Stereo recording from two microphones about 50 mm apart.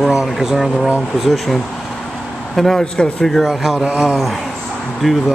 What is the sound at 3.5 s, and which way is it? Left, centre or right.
Speech, centre.